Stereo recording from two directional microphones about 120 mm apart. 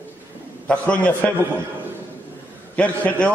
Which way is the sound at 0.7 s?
10° left (ahead or behind).